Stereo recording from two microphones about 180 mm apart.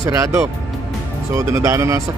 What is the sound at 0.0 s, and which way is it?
Speech, 15° right (ahead or behind).